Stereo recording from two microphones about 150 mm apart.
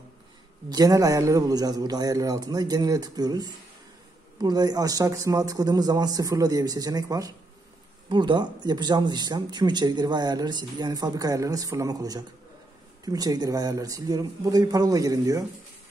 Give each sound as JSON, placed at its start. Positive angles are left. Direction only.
{"t": 0.7, "sound": "speech", "side_deg": -25}